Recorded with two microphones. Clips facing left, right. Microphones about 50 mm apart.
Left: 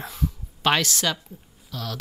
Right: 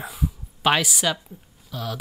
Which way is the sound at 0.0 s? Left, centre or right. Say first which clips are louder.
Right 1 dB; centre.